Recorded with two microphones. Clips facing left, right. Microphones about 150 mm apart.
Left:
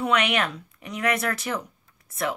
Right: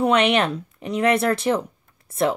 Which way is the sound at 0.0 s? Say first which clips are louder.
Right 6 dB; 30° right (ahead or behind).